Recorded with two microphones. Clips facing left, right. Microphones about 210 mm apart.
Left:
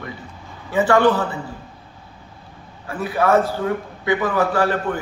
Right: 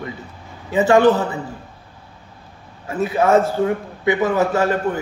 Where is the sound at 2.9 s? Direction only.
20° right (ahead or behind).